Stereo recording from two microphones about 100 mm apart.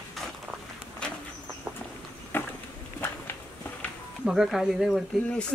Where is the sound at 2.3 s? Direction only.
20° left (ahead or behind).